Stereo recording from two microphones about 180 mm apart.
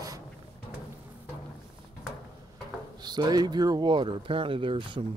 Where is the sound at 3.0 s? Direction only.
25° right (ahead or behind).